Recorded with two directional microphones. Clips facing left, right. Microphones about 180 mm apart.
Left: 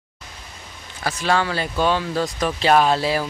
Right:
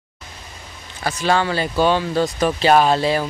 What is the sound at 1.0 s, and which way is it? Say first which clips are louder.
Speech: right 2 dB; centre (ahead or behind).